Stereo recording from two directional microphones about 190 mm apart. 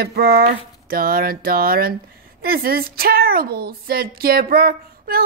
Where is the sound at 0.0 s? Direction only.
55° right (ahead or behind).